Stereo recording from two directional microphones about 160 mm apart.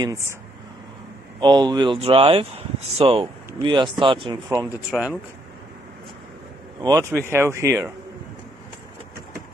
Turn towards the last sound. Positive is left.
turn(degrees=-15)  # may be behind; listen again after turning